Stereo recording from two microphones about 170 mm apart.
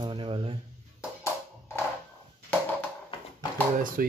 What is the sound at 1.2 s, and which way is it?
Music, 15° left (ahead or behind).